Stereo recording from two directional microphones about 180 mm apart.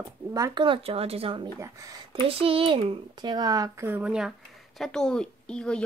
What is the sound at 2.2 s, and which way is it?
Speech, 30° right (ahead or behind).